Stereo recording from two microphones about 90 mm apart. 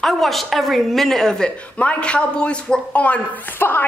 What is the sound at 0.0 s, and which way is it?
A woman's voice, 5° left (ahead or behind).